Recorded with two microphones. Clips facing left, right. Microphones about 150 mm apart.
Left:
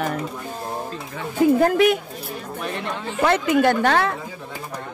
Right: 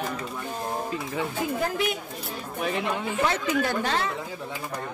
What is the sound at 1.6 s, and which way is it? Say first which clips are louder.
Speech: left 10 dB; 65° left (ahead or behind).